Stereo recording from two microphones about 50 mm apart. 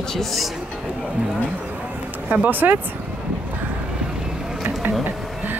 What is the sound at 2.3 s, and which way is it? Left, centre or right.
Speech, right.